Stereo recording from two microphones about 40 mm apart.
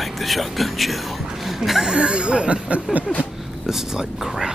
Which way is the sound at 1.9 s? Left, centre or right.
Right.